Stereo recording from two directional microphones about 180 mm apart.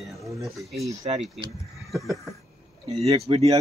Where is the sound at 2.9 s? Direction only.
35° right (ahead or behind).